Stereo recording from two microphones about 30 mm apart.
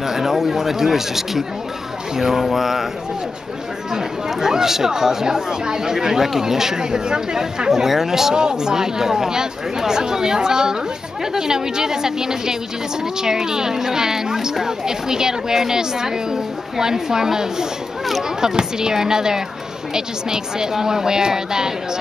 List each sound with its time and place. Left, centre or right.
0.0 s speech: centre
3.9 s speech: centre
8.4 s speech: right